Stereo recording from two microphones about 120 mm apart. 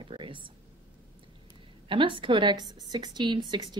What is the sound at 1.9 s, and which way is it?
A woman's voice, 45° right (ahead or behind).